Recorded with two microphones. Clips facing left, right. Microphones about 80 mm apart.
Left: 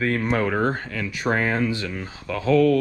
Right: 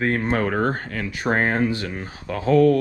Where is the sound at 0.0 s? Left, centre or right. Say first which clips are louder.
Right 1 dB; right.